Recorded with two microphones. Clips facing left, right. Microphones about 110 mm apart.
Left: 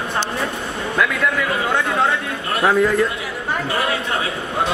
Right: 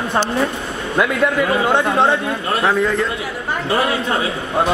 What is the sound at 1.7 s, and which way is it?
Speech, 30° right (ahead or behind).